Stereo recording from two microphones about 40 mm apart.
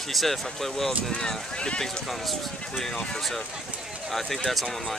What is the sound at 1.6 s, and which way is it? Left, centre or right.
Speech, left.